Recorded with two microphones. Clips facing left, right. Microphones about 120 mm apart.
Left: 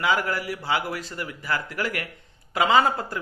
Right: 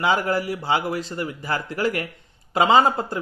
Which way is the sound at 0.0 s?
25° right (ahead or behind).